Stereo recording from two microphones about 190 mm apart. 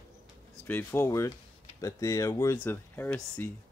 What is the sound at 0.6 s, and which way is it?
Speech, 10° left (ahead or behind).